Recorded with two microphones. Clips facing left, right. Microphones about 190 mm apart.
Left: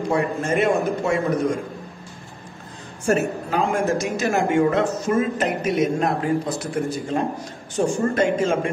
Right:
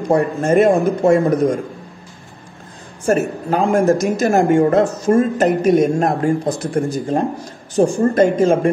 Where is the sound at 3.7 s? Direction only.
45° right (ahead or behind).